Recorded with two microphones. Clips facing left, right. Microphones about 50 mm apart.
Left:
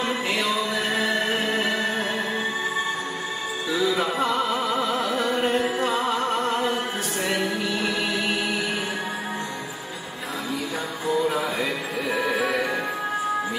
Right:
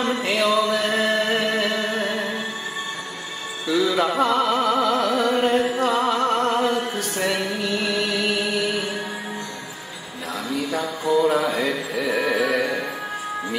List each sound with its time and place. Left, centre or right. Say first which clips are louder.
0.0 s music: right 3 dB; right
3.7 s music: right 4 dB; right
10.7 s music: right 5 dB; right
12.1 s music: right 3 dB; right